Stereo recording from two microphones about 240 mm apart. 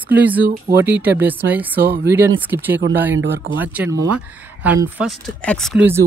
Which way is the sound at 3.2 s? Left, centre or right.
Right.